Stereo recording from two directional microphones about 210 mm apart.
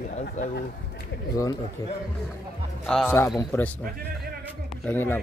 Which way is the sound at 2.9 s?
5° left (ahead or behind).